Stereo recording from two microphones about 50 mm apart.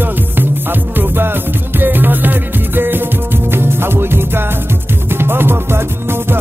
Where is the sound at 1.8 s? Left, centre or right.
Right.